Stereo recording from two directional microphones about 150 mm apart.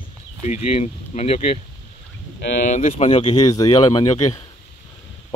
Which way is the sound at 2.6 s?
55° left (ahead or behind).